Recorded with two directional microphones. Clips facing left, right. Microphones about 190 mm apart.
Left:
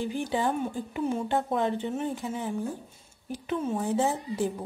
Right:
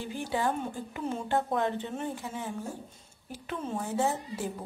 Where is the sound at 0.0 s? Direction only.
20° left (ahead or behind).